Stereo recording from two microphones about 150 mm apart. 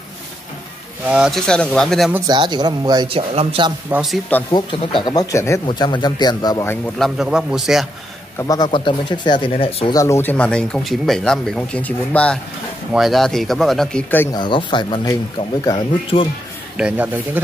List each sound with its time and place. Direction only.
1.0 s speech: 5° right (ahead or behind)
2.2 s speech: 30° right (ahead or behind)
4.5 s a man's voice: 30° left (ahead or behind)
5.7 s a man's voice: 30° left (ahead or behind)
7.0 s speech: 5° right (ahead or behind)
8.4 s speech: 25° left (ahead or behind)
9.8 s speech: 20° left (ahead or behind); by 14.0 s centre (ahead or behind)
14.3 s speech: 30° left (ahead or behind)
16.7 s a man's voice: 10° right (ahead or behind)